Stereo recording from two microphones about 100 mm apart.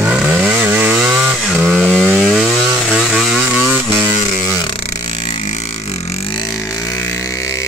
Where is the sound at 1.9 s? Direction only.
5° left (ahead or behind).